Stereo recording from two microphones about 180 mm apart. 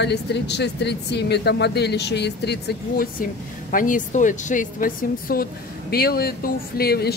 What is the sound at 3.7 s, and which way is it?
A woman's voice, 50° left (ahead or behind).